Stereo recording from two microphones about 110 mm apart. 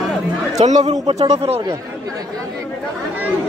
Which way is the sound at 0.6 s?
90° right.